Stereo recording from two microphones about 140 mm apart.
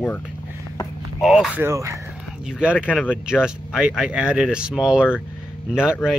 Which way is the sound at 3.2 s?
5° right (ahead or behind).